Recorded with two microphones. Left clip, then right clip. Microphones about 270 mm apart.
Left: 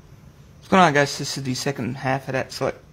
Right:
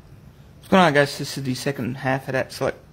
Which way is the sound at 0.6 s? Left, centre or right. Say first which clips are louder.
Even; centre.